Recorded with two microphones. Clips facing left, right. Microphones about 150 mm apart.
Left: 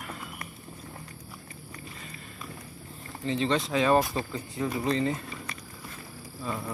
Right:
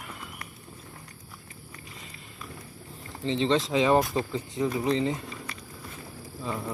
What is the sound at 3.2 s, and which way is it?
Speech, 20° right (ahead or behind).